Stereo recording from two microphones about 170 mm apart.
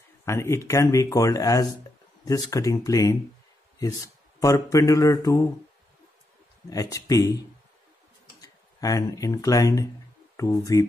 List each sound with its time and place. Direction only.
0.2 s speech: 15° left (ahead or behind)
6.7 s speech: 20° left (ahead or behind)
8.4 s speech: 20° left (ahead or behind)